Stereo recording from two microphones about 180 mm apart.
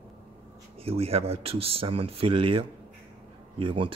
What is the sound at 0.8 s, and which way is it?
Speech, 35° right (ahead or behind).